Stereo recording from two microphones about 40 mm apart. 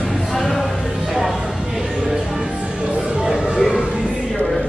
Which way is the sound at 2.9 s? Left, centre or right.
Centre.